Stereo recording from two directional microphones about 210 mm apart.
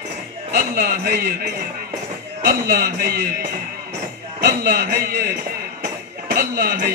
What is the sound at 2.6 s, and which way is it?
Speech, 50° right (ahead or behind).